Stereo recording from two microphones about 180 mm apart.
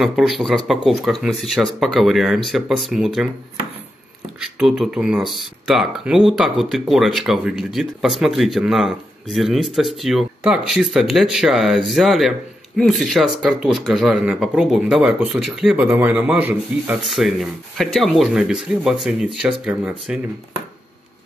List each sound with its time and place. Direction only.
0.0 s speech: centre (ahead or behind)
4.4 s speech: 5° right (ahead or behind)